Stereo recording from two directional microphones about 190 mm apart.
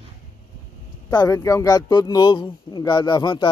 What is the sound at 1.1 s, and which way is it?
Speech, 20° left (ahead or behind).